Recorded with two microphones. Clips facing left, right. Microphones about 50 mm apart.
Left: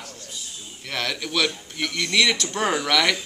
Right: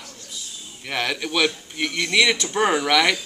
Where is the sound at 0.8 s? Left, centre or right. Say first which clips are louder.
Right 3 dB; centre.